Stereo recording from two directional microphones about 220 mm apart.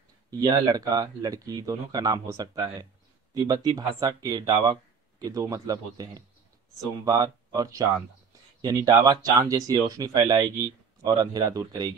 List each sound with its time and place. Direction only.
0.3 s speech: 15° right (ahead or behind)